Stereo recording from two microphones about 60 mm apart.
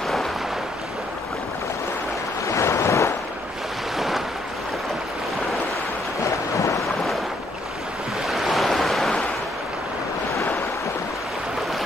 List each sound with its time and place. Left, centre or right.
0.0 s boat: centre
2.4 s waves: left
6.5 s a sound: left
8.3 s waves: centre